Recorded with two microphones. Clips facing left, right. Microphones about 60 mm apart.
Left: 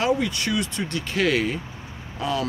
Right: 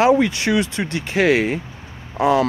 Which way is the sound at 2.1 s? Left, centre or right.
Right.